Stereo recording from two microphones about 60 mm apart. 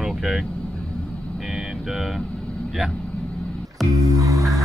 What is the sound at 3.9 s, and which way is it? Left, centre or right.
Music, right.